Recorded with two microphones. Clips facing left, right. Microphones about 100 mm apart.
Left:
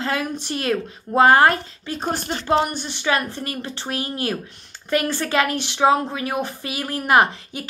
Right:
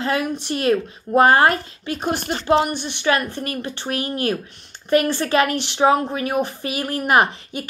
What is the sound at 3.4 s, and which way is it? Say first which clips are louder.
Speech: right 2 dB; 30° left (ahead or behind).